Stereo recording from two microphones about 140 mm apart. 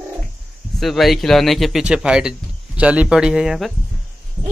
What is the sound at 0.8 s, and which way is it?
Speech, centre (ahead or behind).